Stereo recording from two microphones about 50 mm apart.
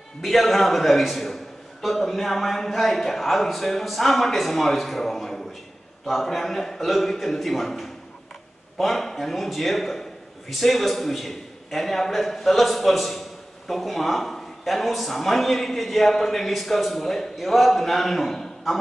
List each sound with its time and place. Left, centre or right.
0.2 s a man's voice: centre